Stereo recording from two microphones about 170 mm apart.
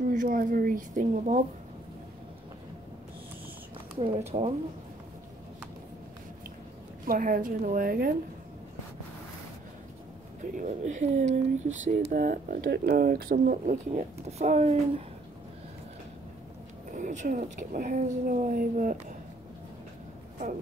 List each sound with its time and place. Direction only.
0.1 s speech: 50° right (ahead or behind)
4.3 s speech: 35° right (ahead or behind)
7.1 s a woman's voice: 55° right (ahead or behind)
10.4 s speech: 50° right (ahead or behind)
16.9 s speech: 45° right (ahead or behind)